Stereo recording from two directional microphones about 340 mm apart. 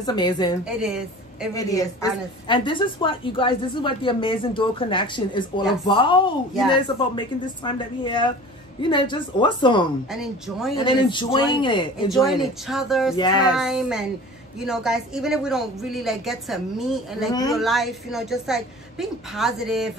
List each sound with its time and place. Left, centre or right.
0.0 s a woman's voice: centre
0.8 s a woman's voice: centre
1.5 s a woman's voice: centre
10.1 s speech: centre
10.8 s a woman's voice: centre
12.3 s speech: centre
13.1 s a woman's voice: centre
13.6 s speech: centre